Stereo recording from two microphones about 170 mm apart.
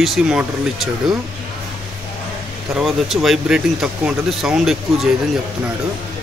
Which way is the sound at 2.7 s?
Centre (ahead or behind).